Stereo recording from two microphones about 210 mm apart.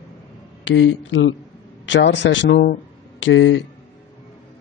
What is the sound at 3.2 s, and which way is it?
Speech, 65° left (ahead or behind).